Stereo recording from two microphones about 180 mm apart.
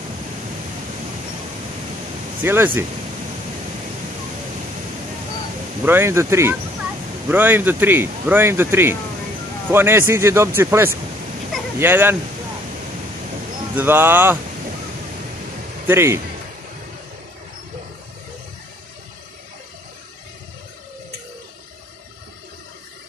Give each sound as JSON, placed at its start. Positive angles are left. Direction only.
{"t": 2.4, "sound": "speech", "side_deg": -10}
{"t": 5.9, "sound": "speech", "side_deg": -15}
{"t": 13.7, "sound": "speech", "side_deg": -10}
{"t": 15.9, "sound": "speech", "side_deg": -15}